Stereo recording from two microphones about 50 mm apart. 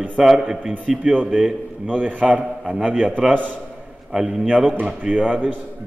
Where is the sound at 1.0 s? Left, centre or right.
Right.